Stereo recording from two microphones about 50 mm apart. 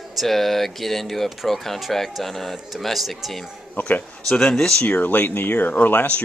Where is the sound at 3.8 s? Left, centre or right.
Left.